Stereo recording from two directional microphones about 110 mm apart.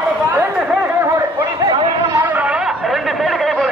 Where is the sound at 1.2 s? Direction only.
35° right (ahead or behind).